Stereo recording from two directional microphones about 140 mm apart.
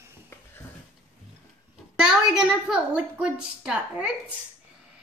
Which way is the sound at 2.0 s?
5° right (ahead or behind).